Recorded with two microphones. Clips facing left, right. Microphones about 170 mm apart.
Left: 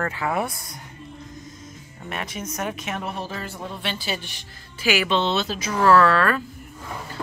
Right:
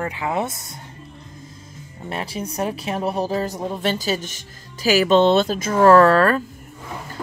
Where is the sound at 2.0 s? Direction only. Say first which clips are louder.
Right 4 dB; 30° right (ahead or behind).